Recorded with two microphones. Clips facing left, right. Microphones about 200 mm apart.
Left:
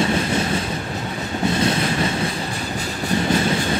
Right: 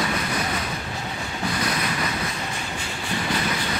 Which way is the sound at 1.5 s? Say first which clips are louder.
Left 7 dB; 25° left (ahead or behind).